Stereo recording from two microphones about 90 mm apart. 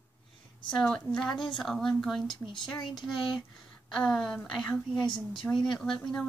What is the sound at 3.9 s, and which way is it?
A woman's voice, 5° left (ahead or behind).